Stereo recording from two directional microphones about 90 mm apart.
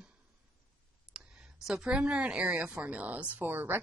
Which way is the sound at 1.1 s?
5° right (ahead or behind).